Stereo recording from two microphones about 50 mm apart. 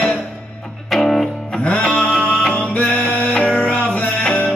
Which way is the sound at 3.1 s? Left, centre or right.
Left.